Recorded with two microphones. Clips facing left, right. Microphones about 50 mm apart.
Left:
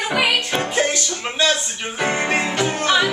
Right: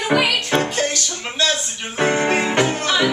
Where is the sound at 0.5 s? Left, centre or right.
Centre.